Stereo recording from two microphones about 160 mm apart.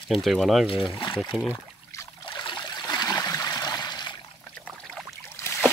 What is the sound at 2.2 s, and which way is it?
Trickle, 25° left (ahead or behind).